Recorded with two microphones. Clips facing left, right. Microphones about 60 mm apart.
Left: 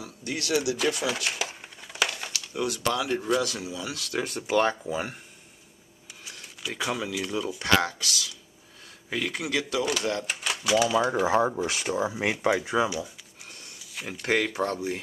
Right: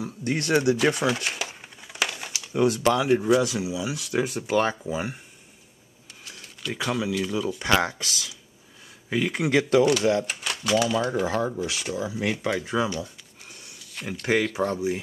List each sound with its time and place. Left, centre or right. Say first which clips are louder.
0.0 s speech: right 6 dB; right
1.0 s crumpling: right 3 dB; centre
2.3 s a sound: right 5 dB; right
2.6 s speech: right 7 dB; right
3.1 s speech: right 6 dB; centre
6.7 s speech: right 3 dB; centre
7.6 s speech: right 1 dB; centre
8.0 s a sound: left 1 dB; right
9.3 s speech: right 11 dB; right
10.2 s speech: even; centre; by 12.3 s left
12.4 s speech: left 4 dB; centre
13.5 s sniff: even; centre
13.7 s speech: right 3 dB; centre